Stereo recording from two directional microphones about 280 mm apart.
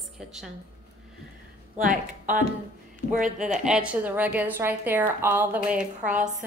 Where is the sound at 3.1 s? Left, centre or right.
Right.